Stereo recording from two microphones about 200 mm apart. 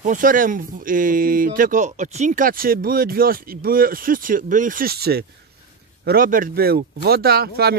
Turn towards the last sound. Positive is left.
turn(degrees=-50)  # may be behind; listen again after turning